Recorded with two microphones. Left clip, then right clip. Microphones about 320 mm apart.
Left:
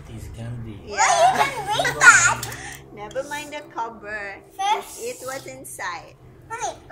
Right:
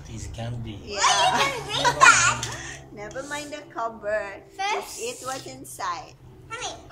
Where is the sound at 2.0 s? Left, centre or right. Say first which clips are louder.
Left 3 dB; centre.